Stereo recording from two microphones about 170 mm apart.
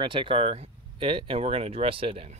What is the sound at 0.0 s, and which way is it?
Speech, 30° right (ahead or behind).